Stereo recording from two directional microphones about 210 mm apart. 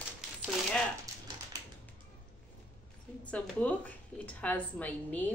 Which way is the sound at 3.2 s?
5° left (ahead or behind).